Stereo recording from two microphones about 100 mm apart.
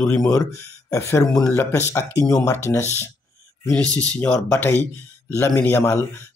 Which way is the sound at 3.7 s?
15° left (ahead or behind).